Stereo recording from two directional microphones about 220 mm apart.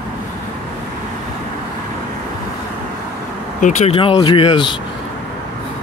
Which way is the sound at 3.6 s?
30° left (ahead or behind).